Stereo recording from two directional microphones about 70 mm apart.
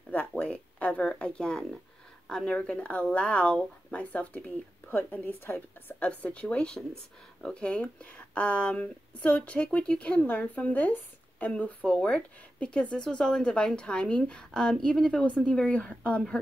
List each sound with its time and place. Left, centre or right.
0.4 s a sound: centre
2.2 s speech: centre; by 5.9 s left
5.9 s speech: centre